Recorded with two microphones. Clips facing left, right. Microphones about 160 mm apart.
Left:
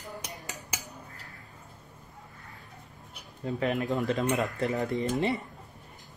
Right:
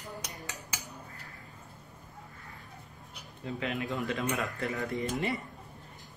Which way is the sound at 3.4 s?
40° left (ahead or behind).